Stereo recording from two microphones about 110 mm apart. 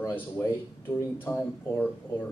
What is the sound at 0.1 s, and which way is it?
A man's voice, 20° left (ahead or behind).